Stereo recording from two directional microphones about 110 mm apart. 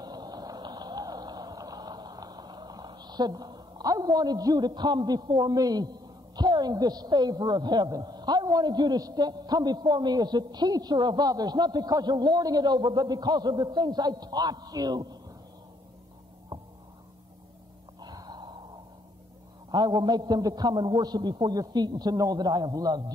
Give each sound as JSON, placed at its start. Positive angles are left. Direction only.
{"t": 0.0, "sound": "speech", "side_deg": -40}
{"t": 18.0, "sound": "gasp", "side_deg": -35}
{"t": 19.7, "sound": "a man's voice", "side_deg": -40}